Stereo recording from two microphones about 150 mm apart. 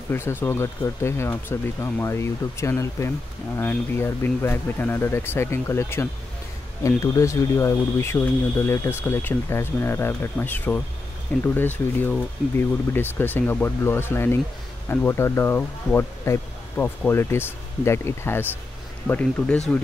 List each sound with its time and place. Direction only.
0.1 s speech: 15° left (ahead or behind)